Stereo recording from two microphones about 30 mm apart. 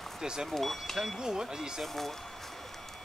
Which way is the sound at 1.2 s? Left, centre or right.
Right.